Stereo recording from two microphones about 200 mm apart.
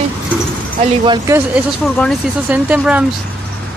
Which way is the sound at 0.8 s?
25° right (ahead or behind).